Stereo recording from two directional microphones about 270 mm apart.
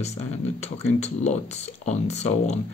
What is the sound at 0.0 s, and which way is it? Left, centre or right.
Speech, left.